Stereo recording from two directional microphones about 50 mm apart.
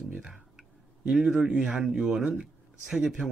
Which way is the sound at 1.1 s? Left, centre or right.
Centre.